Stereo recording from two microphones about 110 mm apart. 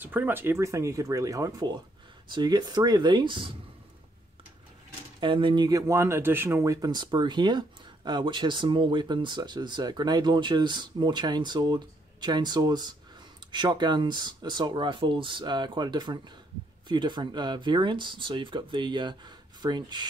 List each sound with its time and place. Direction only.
0.0 s speech: 15° right (ahead or behind); by 3.5 s 45° right (ahead or behind)
5.2 s speech: 50° right (ahead or behind)
5.7 s speech: 30° right (ahead or behind)